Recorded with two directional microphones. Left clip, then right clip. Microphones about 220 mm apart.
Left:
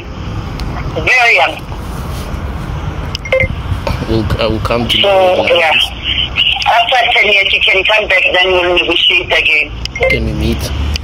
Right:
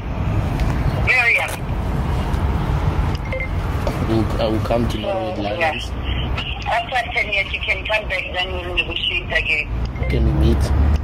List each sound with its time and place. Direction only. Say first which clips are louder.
1.0 s speech: left 8 dB; 40° left (ahead or behind)
4.4 s speech: left 7 dB; 40° left (ahead or behind)